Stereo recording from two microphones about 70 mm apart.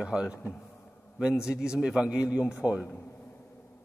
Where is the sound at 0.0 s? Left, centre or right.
Centre.